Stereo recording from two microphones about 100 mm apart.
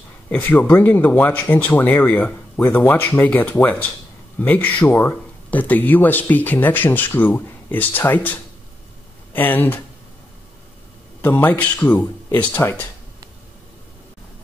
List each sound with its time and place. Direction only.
0.3 s speech: 20° left (ahead or behind)
9.3 s speech: 20° left (ahead or behind)
11.1 s speech: 25° left (ahead or behind)